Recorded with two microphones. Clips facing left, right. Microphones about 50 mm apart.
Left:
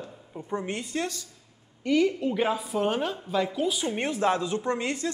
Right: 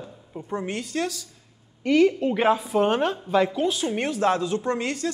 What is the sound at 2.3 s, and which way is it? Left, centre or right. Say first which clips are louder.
Speech: right 5 dB; right.